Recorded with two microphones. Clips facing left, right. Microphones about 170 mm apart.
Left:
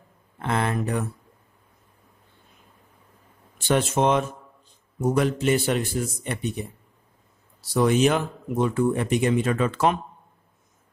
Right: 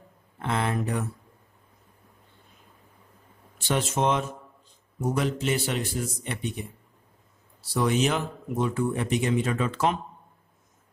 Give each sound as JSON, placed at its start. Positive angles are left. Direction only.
{"t": 0.5, "sound": "speech", "side_deg": 55}
{"t": 3.6, "sound": "a man's voice", "side_deg": 55}
{"t": 7.7, "sound": "speech", "side_deg": 50}